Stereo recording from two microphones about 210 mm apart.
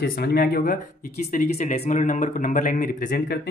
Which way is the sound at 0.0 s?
45° left (ahead or behind).